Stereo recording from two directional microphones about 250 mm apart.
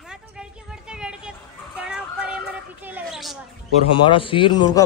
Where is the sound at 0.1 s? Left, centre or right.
Centre.